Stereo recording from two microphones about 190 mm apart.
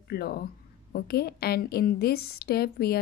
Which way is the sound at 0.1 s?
55° left (ahead or behind).